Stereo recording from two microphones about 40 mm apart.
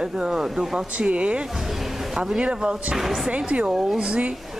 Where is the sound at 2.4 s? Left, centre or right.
Right.